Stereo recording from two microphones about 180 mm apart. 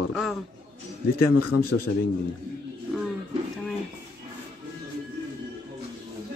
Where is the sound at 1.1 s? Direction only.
60° left (ahead or behind).